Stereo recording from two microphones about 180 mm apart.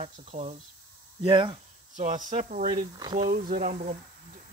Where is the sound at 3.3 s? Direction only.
45° right (ahead or behind).